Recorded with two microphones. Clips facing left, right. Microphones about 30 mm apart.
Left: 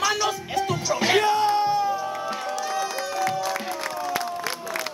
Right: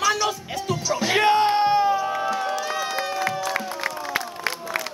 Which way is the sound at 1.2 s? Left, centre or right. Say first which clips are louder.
Right 3 dB; right.